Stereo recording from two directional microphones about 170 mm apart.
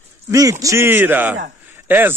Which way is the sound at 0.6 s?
15° right (ahead or behind).